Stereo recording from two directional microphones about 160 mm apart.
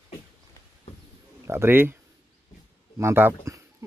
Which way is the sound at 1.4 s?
15° right (ahead or behind).